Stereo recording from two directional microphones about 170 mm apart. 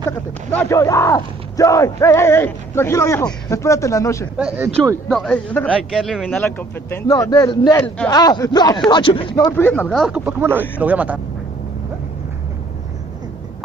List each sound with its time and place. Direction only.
0.0 s speech: 15° left (ahead or behind)
4.4 s a man's voice: 5° right (ahead or behind)
6.4 s speech: 15° left (ahead or behind)
9.5 s a man's voice: 10° left (ahead or behind); by 11.1 s 10° right (ahead or behind)